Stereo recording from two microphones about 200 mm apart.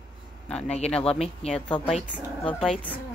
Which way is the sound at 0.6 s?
35° left (ahead or behind).